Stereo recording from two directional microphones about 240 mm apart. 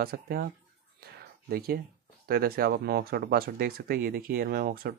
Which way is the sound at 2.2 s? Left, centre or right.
Right.